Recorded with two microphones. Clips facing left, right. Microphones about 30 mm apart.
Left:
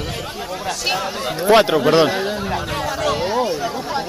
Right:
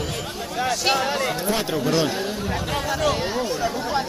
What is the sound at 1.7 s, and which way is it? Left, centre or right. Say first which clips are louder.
Speech: left 7 dB; left.